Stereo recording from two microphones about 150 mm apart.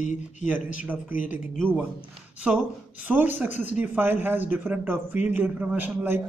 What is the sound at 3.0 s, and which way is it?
Speech, 15° right (ahead or behind).